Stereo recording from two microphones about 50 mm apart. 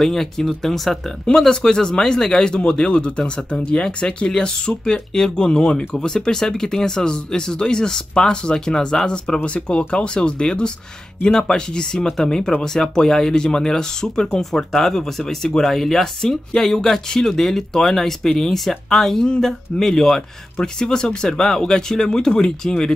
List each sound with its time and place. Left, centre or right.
0.0 s speech: centre